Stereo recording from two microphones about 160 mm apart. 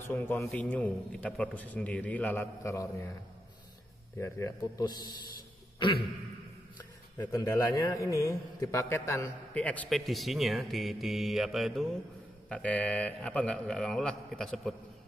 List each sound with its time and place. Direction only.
0.0 s a man's voice: 15° left (ahead or behind)
4.2 s a man's voice: 20° left (ahead or behind)
5.8 s a sound: 30° left (ahead or behind)
6.8 s a man's voice: 25° left (ahead or behind); by 14.8 s centre (ahead or behind)